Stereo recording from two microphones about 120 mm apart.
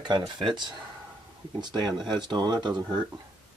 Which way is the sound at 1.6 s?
40° right (ahead or behind).